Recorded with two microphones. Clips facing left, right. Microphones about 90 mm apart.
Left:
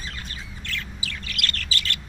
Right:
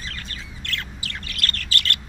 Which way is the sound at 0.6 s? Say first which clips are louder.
Right 1 dB; 60° right (ahead or behind).